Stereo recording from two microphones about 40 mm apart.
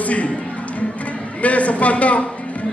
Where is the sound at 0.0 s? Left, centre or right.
Left.